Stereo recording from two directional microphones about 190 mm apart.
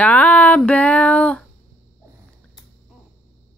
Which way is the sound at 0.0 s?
5° left (ahead or behind).